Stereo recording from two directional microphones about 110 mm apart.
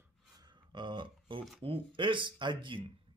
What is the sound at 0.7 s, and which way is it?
Speech, 45° right (ahead or behind).